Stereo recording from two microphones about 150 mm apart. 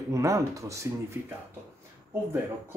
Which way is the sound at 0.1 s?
20° right (ahead or behind).